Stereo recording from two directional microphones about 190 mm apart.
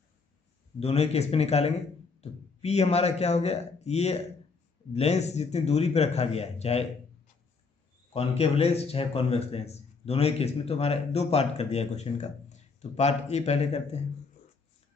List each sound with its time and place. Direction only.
0.7 s speech: 35° left (ahead or behind)
8.1 s speech: 35° left (ahead or behind)